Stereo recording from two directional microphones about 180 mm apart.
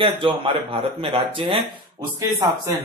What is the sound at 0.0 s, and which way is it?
A man's voice, 30° right (ahead or behind).